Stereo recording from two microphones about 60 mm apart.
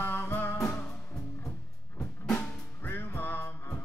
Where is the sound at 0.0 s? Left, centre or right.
Left.